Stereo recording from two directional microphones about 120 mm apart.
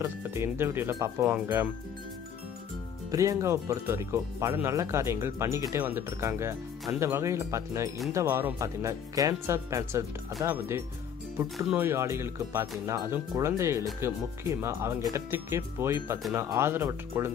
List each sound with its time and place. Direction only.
0.0 s speech: 20° right (ahead or behind)
3.1 s speech: 25° right (ahead or behind)
11.7 s speech: 20° right (ahead or behind)